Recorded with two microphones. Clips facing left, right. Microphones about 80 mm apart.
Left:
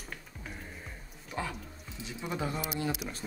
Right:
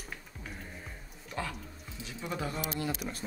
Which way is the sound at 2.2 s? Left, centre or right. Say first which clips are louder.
Left 1 dB; centre.